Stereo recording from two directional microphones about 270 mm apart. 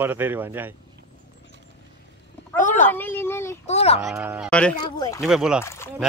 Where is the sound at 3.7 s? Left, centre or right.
Left.